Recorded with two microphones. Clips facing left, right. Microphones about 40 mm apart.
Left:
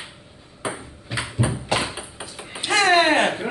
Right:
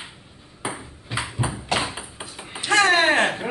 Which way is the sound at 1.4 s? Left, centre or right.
Centre.